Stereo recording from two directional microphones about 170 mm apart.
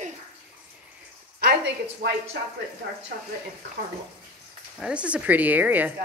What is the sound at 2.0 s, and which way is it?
Speech, 60° right (ahead or behind).